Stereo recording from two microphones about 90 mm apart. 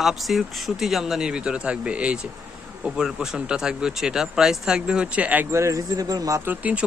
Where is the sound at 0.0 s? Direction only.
Centre (ahead or behind); by 5.5 s 15° right (ahead or behind).